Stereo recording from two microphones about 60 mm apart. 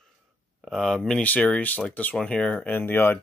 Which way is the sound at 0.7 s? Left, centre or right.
Centre.